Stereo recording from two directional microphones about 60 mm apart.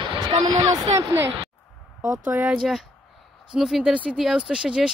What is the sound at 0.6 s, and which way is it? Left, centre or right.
Speech, right.